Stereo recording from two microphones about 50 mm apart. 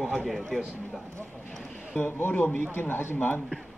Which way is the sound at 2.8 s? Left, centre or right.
Left.